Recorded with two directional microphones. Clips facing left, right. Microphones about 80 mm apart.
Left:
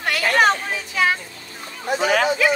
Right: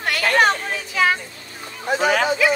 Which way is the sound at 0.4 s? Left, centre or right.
Centre.